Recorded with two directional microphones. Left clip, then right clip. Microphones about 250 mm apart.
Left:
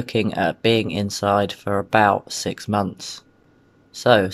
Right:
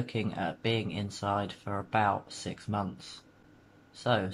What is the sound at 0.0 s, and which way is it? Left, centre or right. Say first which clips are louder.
Speech: left 13 dB; left.